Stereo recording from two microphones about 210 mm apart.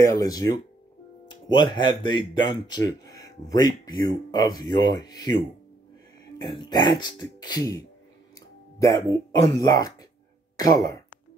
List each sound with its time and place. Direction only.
0.0 s speech: 15° left (ahead or behind)
6.3 s speech: 20° left (ahead or behind)